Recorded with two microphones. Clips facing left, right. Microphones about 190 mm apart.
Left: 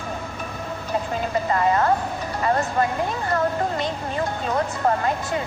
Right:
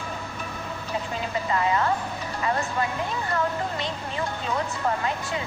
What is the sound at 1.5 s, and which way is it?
A woman's voice, 45° left (ahead or behind).